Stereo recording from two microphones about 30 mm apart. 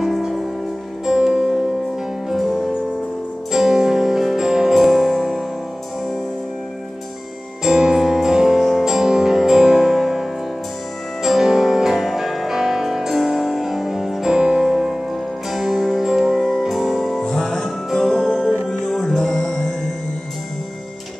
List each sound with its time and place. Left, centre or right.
1.0 s music: centre
3.5 s music: centre
7.6 s music: centre
11.2 s music: centre
16.3 s music: centre
17.2 s music: centre